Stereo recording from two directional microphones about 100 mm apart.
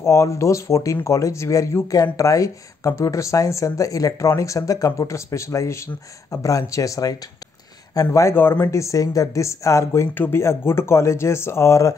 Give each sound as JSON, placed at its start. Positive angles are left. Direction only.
{"t": 0.0, "sound": "speech", "side_deg": 30}